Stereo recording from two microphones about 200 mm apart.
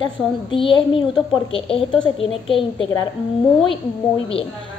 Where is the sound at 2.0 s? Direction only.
25° left (ahead or behind).